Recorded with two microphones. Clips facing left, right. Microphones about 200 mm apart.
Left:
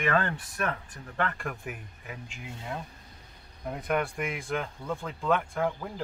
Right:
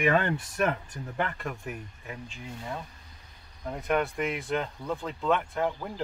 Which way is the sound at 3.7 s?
Centre (ahead or behind).